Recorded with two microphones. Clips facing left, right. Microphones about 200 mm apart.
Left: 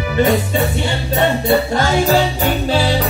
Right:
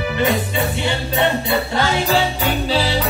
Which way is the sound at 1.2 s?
45° left (ahead or behind).